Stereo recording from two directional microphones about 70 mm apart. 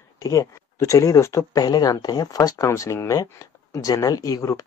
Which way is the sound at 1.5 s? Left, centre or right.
Left.